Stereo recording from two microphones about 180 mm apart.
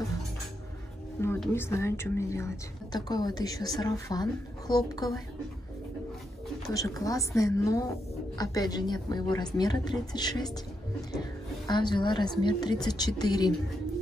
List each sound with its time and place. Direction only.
1.2 s music: 15° left (ahead or behind)
1.5 s a woman's voice: 15° left (ahead or behind)
6.7 s a woman's voice: 20° left (ahead or behind)
11.6 s a woman's voice: 25° left (ahead or behind)